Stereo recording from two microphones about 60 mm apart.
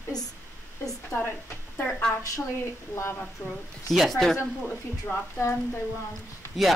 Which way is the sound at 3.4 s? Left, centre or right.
Left.